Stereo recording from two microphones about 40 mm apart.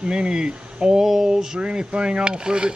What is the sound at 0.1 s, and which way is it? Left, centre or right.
Speech, right.